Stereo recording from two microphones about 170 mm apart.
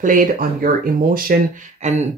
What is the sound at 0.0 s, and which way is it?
Speech, 50° right (ahead or behind).